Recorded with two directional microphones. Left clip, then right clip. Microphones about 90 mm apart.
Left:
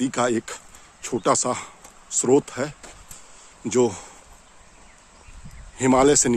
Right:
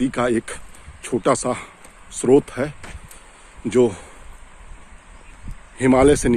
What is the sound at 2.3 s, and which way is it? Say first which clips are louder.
Speech: right 4 dB; 5° left (ahead or behind).